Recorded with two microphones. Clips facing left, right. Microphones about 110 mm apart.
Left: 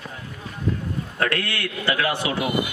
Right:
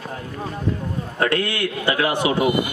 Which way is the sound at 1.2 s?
20° right (ahead or behind).